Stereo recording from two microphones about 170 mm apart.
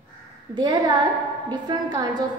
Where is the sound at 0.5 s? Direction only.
25° right (ahead or behind).